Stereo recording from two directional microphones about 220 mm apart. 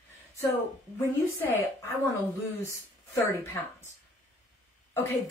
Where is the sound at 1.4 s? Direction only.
10° left (ahead or behind).